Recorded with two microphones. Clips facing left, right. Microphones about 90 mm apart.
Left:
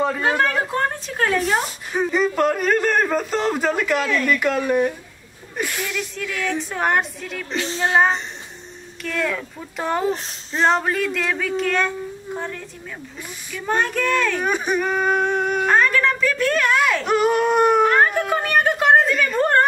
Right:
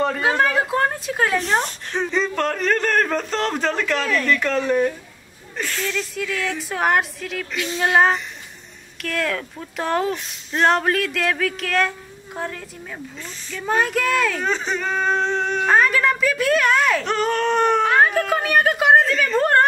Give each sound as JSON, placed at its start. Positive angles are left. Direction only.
{"t": 0.0, "sound": "a woman's voice", "side_deg": 0}
{"t": 6.6, "sound": "a woman's voice", "side_deg": 0}
{"t": 7.5, "sound": "music", "side_deg": 30}
{"t": 7.8, "sound": "a woman's voice", "side_deg": -5}
{"t": 13.7, "sound": "a woman's voice", "side_deg": 0}
{"t": 14.4, "sound": "speech", "side_deg": 15}
{"t": 15.7, "sound": "a woman's voice", "side_deg": -5}